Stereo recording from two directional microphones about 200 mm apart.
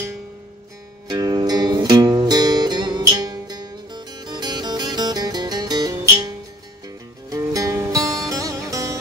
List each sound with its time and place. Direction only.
1.0 s music: 20° right (ahead or behind)